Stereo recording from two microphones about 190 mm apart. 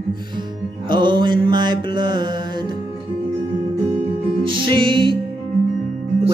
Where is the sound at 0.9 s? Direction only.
25° right (ahead or behind).